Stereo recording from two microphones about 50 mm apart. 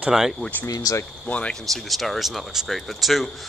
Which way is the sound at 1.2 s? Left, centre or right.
Left.